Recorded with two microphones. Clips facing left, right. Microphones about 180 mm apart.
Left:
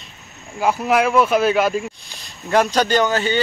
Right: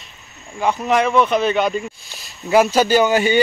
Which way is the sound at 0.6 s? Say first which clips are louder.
Even; 5° left (ahead or behind).